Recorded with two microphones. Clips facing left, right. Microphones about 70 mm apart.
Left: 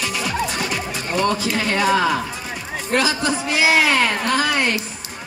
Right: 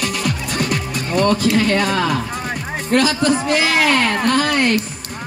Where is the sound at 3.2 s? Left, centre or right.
Right.